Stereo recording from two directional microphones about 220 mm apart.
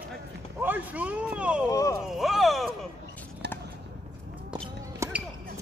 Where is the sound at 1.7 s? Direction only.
15° left (ahead or behind).